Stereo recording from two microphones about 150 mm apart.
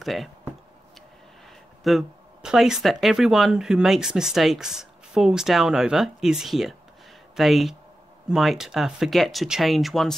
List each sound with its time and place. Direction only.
0.0 s speech: centre (ahead or behind)
1.8 s speech: centre (ahead or behind)